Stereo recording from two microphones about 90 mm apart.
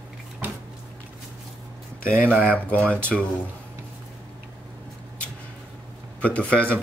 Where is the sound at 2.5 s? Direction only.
15° left (ahead or behind).